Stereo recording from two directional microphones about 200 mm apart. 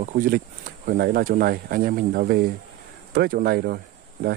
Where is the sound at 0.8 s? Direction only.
50° right (ahead or behind).